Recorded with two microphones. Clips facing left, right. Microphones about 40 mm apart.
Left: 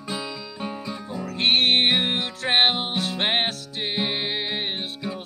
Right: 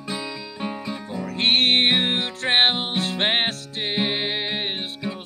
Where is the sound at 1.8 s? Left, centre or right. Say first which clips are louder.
Right 1 dB; centre.